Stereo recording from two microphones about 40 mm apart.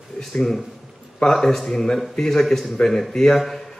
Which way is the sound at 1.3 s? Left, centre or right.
Centre.